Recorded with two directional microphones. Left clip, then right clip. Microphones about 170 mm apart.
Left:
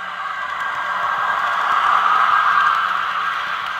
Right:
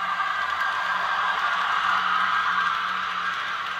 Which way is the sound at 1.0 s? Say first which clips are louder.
Left 5 dB; 35° left (ahead or behind).